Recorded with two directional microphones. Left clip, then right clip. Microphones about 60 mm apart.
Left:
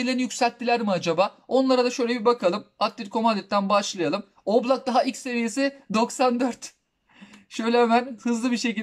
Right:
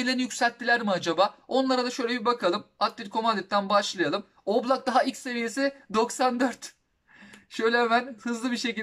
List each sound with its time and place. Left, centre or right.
0.0 s speech: left
7.5 s speech: left